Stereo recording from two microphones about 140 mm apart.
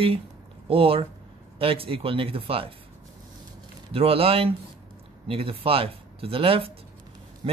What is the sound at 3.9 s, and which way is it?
Speech, 45° right (ahead or behind).